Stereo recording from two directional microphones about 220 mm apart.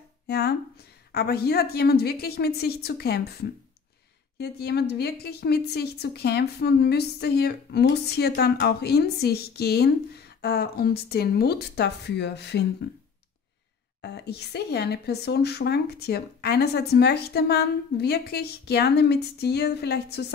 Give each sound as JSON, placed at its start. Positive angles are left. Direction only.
{"t": 0.3, "sound": "a woman's voice", "side_deg": 45}
{"t": 4.4, "sound": "a woman's voice", "side_deg": 45}
{"t": 14.0, "sound": "a woman's voice", "side_deg": 50}